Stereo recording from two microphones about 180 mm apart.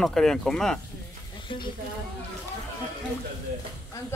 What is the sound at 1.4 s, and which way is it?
Speech, 25° left (ahead or behind).